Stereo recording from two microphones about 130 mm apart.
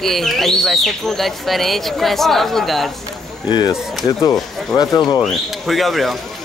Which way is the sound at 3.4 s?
35° left (ahead or behind).